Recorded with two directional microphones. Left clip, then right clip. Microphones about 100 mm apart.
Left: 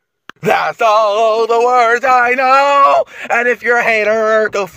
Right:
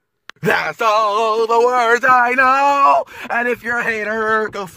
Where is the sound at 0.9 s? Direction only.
15° right (ahead or behind).